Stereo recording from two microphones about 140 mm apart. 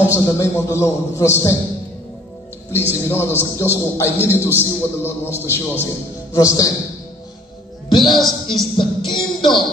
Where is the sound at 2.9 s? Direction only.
15° left (ahead or behind).